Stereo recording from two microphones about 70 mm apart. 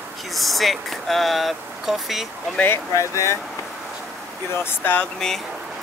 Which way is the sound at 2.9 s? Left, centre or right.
Left.